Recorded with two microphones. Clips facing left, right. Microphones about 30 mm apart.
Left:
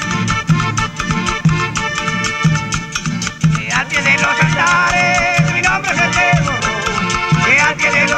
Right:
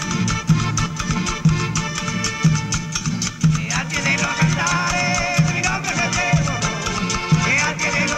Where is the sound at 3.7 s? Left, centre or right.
Left.